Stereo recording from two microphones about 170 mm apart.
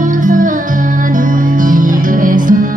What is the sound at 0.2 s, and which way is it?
Music, 50° right (ahead or behind).